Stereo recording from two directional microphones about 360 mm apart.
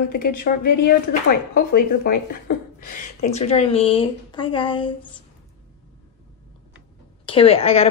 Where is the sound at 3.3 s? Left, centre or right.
Centre.